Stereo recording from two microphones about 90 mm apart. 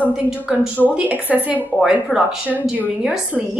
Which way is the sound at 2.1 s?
5° right (ahead or behind).